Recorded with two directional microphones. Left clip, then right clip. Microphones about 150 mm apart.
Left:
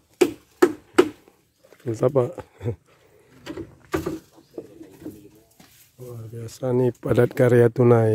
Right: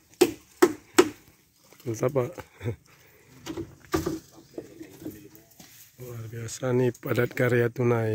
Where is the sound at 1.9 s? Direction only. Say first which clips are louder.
Left 6 dB; 35° left (ahead or behind).